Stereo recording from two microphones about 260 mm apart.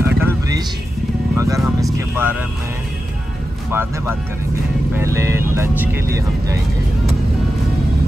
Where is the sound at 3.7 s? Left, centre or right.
Centre.